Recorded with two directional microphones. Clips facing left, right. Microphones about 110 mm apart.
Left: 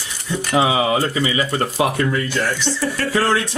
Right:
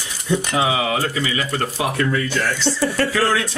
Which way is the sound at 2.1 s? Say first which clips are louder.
Even; 15° left (ahead or behind).